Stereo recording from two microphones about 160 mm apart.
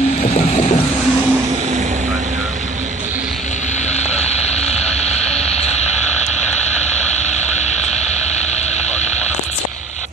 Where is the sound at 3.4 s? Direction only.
45° left (ahead or behind).